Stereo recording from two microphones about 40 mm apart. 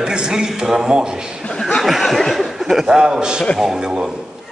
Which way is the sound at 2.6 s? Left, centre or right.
Centre.